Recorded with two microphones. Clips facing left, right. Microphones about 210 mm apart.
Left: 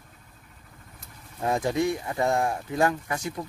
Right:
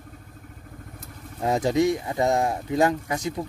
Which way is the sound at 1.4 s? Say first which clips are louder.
Right 4 dB; 20° right (ahead or behind).